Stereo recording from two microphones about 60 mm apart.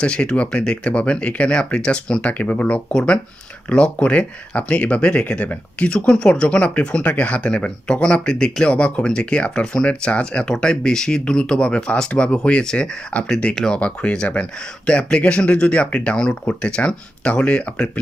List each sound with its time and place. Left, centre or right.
0.0 s speech: centre